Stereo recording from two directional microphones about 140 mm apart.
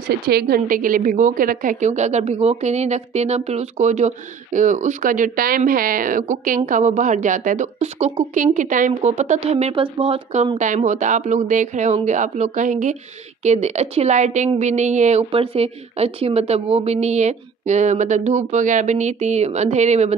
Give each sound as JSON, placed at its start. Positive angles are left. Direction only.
{"t": 0.3, "sound": "a woman's voice", "side_deg": -90}